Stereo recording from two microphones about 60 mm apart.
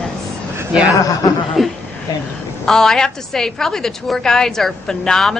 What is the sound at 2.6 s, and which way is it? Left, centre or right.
Speech, centre.